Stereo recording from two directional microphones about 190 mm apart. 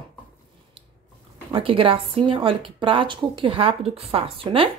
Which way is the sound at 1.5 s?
30° right (ahead or behind).